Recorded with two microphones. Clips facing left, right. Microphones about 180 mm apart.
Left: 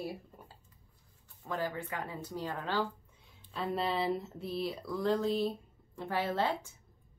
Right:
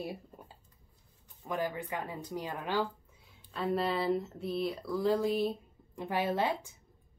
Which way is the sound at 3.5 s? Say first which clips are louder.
Right 2 dB; centre (ahead or behind).